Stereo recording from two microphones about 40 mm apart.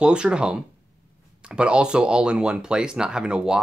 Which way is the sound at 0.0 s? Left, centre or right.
Right.